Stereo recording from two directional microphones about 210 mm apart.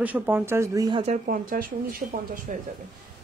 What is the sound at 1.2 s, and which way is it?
Speech, 40° right (ahead or behind).